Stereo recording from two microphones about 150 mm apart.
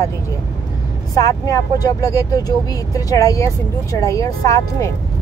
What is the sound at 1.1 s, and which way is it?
Speech, 25° left (ahead or behind).